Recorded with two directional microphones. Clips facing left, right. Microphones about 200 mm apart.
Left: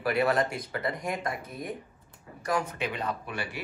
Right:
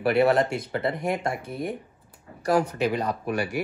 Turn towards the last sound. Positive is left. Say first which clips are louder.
# right 7 dB
turn(degrees=-45)  # may be behind; listen again after turning